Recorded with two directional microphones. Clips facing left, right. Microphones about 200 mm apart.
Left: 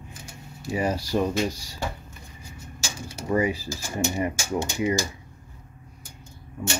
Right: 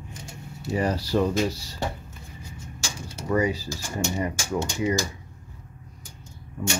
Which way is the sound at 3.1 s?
25° left (ahead or behind).